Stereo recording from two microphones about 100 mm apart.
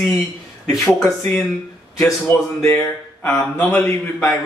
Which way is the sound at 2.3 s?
20° left (ahead or behind).